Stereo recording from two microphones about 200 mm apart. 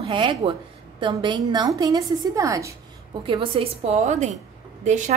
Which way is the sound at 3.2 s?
25° right (ahead or behind).